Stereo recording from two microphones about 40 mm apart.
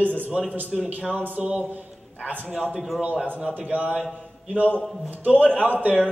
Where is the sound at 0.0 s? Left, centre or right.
Right.